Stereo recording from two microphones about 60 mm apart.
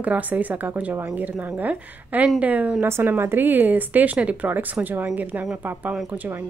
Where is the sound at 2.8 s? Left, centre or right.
Right.